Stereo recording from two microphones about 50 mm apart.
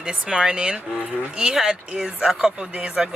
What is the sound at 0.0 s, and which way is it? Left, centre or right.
Speech, centre.